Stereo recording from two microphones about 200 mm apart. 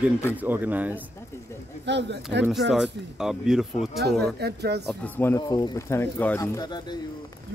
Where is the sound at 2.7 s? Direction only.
Centre (ahead or behind).